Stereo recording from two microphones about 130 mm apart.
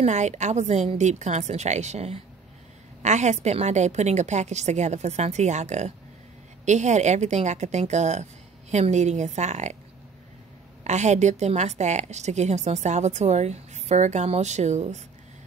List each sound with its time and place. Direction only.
0.0 s a woman's voice: 65° right (ahead or behind)
10.8 s a woman's voice: 65° right (ahead or behind)